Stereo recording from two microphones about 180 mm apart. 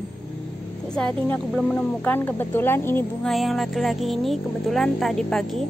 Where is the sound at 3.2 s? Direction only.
Centre (ahead or behind).